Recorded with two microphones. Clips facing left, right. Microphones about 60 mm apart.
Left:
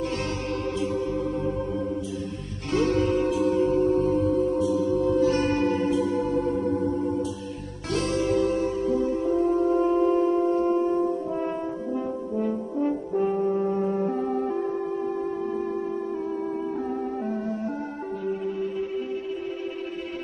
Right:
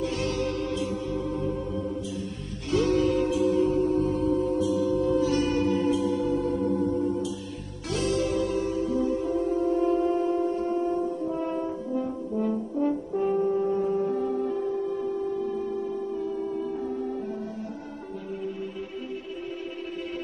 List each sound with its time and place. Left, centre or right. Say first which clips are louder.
2.7 s music: even; left
8.3 s music: left 3 dB; left
9.7 s singing bowl: left 2 dB; left
13.7 s music: even; left
17.3 s music: left 5 dB; left